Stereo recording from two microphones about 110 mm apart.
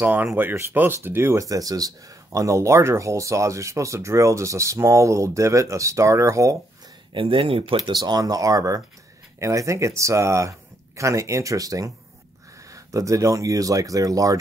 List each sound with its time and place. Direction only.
0.0 s speech: 15° right (ahead or behind)
7.2 s speech: 55° right (ahead or behind)
8.0 s speech: 35° right (ahead or behind)